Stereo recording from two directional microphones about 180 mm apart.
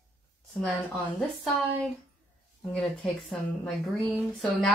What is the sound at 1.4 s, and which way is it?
A woman's voice, centre (ahead or behind).